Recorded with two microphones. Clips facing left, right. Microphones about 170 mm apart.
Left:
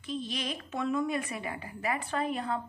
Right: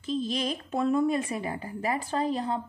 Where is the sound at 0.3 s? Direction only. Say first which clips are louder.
Right 6 dB; 35° right (ahead or behind).